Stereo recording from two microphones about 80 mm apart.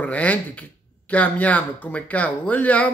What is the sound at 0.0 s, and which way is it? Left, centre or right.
Speech, centre.